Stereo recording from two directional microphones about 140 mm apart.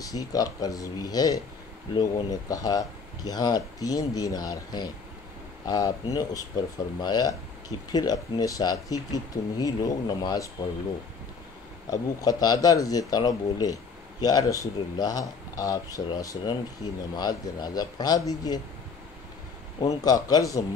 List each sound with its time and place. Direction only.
0.0 s speech: 25° left (ahead or behind)
11.9 s speech: 25° left (ahead or behind)
19.8 s speech: 25° left (ahead or behind)